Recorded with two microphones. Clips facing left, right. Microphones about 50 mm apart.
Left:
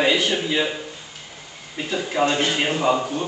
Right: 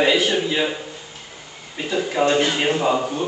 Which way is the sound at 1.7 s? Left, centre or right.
Centre.